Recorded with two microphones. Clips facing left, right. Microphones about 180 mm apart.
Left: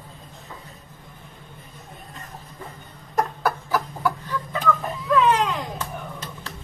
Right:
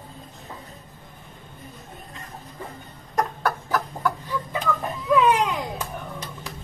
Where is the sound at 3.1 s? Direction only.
5° left (ahead or behind).